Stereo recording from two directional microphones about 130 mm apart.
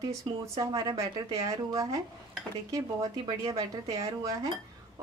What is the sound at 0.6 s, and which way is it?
Speech, 30° right (ahead or behind).